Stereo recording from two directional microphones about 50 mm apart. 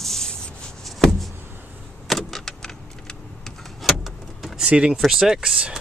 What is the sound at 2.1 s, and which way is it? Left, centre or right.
Power windows, centre.